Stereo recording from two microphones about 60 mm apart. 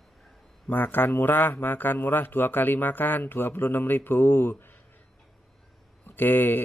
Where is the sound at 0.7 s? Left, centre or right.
Left.